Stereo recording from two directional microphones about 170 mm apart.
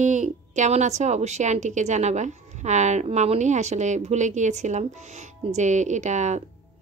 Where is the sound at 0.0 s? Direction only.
45° right (ahead or behind).